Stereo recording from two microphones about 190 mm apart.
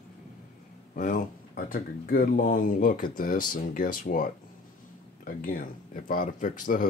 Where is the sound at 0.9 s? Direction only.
45° left (ahead or behind).